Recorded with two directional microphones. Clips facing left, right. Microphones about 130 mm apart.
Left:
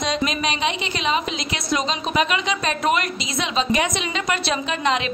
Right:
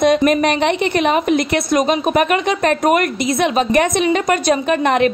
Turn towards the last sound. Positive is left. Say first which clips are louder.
# right 8 dB
turn(degrees=-55)  # may be behind; listen again after turning